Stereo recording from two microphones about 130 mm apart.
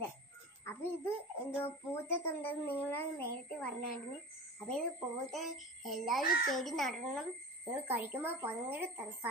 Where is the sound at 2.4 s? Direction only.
15° left (ahead or behind).